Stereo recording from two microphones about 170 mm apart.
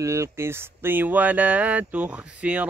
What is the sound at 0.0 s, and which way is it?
Speech, 15° right (ahead or behind).